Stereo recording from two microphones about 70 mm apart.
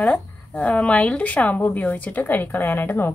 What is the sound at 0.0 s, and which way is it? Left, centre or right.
A woman's voice, centre.